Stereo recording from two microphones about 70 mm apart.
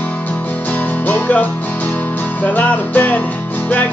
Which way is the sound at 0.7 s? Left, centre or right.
Left.